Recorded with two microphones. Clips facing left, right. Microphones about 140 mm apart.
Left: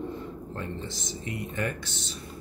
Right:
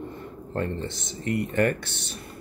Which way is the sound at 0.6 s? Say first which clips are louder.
Right 9 dB; 60° right (ahead or behind).